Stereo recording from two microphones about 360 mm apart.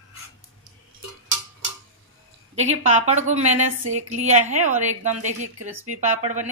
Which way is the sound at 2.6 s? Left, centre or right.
Centre.